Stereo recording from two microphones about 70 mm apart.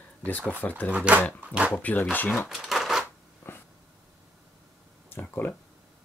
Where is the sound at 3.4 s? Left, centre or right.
Left.